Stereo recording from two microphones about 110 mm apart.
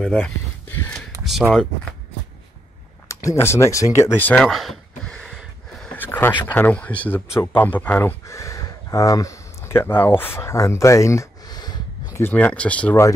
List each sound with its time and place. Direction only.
0.0 s speech: 10° left (ahead or behind)
1.2 s speech: centre (ahead or behind)
3.1 s speech: 30° left (ahead or behind)
4.5 s a sound: centre (ahead or behind); by 6.3 s 15° left (ahead or behind)
6.5 s speech: 15° left (ahead or behind); by 12.2 s 40° left (ahead or behind)
12.2 s speech: 15° left (ahead or behind)